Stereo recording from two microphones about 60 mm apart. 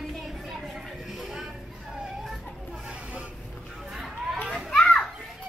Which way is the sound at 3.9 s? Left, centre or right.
Centre.